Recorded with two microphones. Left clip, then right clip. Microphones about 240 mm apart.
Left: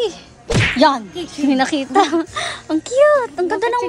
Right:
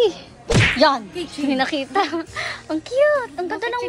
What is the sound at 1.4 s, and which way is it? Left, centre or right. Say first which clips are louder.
Speech: left 4 dB; centre.